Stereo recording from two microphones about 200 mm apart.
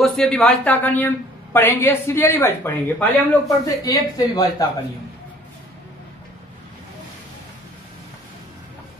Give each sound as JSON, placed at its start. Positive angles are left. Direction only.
{"t": 0.0, "sound": "speech", "side_deg": 5}